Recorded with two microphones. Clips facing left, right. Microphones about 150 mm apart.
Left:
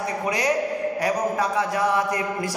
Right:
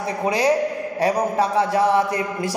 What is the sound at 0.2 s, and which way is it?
A man's voice, 30° right (ahead or behind).